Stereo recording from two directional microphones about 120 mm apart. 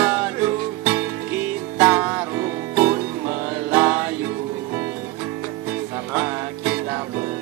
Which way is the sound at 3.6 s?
20° right (ahead or behind).